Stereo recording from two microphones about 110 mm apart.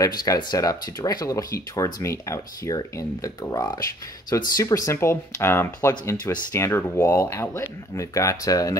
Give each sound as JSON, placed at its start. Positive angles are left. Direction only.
{"t": 0.0, "sound": "speech", "side_deg": 35}